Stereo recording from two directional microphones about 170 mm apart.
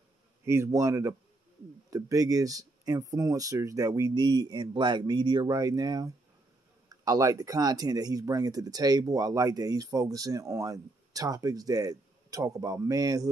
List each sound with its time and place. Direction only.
0.5 s speech: 15° right (ahead or behind)